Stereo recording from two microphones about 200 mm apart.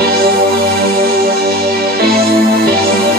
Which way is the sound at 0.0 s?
50° right (ahead or behind).